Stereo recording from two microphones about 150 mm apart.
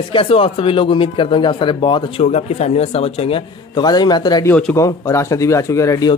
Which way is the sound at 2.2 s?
45° left (ahead or behind).